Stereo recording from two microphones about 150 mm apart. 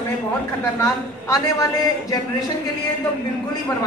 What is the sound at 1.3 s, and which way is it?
Speech, 25° left (ahead or behind).